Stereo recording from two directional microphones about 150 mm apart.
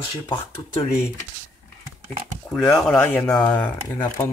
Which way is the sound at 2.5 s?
5° left (ahead or behind).